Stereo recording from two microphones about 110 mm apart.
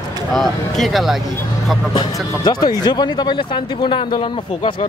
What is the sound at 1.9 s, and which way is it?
Speech, 40° left (ahead or behind).